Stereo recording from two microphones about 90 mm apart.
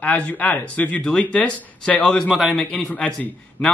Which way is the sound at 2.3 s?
5° right (ahead or behind).